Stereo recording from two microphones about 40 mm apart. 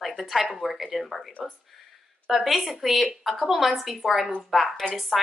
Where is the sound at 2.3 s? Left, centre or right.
Centre.